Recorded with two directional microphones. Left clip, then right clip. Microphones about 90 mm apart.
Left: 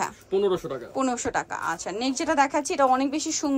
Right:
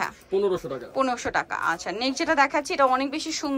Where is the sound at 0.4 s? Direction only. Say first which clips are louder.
Even; 5° left (ahead or behind).